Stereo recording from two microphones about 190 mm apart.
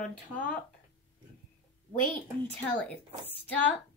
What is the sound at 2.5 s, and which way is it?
Speech, 10° left (ahead or behind).